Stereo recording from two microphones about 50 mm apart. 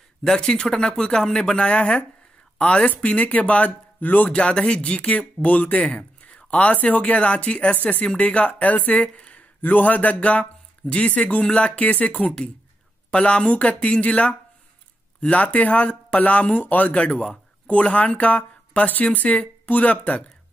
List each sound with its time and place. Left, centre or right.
0.2 s speech: centre; by 4.3 s left
4.3 s speech: left
9.1 s a sound: left
10.9 s speech: left